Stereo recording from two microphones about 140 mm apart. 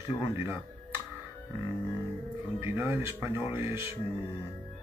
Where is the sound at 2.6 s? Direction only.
20° right (ahead or behind).